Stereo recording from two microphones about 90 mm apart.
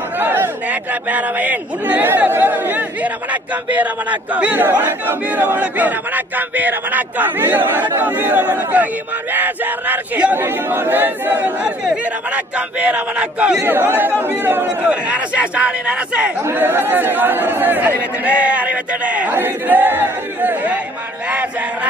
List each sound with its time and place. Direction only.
0.2 s speech: 25° right (ahead or behind)
11.6 s speech: 10° right (ahead or behind)
13.6 s speech: 25° right (ahead or behind)
16.4 s speech: 25° right (ahead or behind)